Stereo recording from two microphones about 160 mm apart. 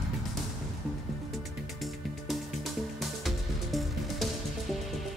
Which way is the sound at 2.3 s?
Centre (ahead or behind).